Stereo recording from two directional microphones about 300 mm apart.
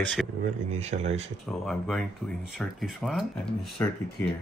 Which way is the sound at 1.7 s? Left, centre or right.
Centre.